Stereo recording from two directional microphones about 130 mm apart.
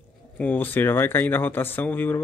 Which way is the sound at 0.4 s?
15° left (ahead or behind).